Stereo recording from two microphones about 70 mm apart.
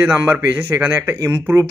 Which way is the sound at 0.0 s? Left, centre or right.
Right.